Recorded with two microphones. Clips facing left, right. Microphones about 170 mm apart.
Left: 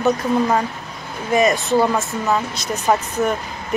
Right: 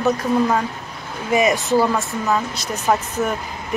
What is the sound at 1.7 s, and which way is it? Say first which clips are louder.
Speech: right 1 dB; 20° left (ahead or behind).